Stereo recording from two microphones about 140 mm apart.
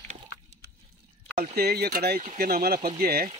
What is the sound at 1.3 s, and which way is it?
Speech, 90° right.